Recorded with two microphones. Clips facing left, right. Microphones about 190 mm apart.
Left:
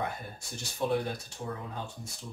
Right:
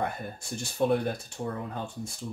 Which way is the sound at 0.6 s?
55° right (ahead or behind).